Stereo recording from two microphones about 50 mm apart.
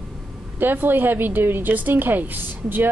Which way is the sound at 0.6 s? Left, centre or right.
Right.